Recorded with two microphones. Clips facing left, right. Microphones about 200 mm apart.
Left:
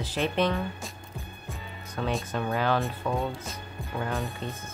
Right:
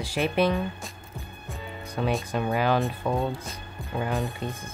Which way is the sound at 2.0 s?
15° right (ahead or behind).